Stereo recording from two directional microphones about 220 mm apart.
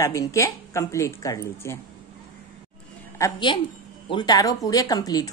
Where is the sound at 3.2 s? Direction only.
15° left (ahead or behind).